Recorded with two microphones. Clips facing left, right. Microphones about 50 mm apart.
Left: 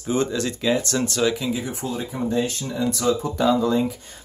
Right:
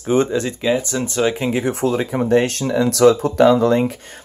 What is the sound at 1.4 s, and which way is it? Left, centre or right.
Speech, right.